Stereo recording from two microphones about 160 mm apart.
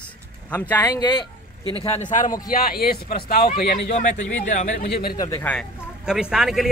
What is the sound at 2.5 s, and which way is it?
Speech, 70° left (ahead or behind).